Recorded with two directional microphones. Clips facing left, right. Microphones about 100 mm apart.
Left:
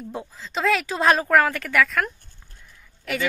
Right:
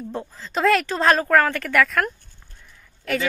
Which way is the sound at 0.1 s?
10° left (ahead or behind).